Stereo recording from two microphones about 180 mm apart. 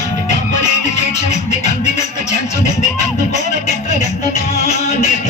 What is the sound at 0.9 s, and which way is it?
Music, 40° left (ahead or behind).